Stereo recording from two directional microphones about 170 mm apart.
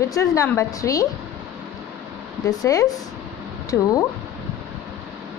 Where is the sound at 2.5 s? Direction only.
20° left (ahead or behind).